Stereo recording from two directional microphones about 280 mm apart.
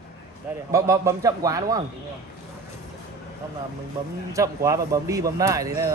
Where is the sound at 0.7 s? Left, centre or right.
Centre.